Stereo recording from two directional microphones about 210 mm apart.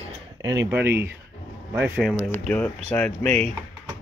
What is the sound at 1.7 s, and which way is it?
Speech, 5° right (ahead or behind).